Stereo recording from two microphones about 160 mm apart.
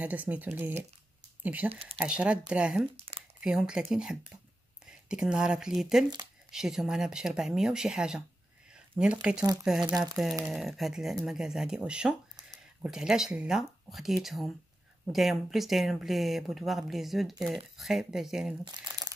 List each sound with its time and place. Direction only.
0.0 s speech: 10° right (ahead or behind)
1.7 s speech: 35° right (ahead or behind)
2.0 s speech: 5° right (ahead or behind)
3.0 s a sound: 40° right (ahead or behind)
3.3 s speech: 5° right (ahead or behind)
18.6 s crumpling: 25° right (ahead or behind)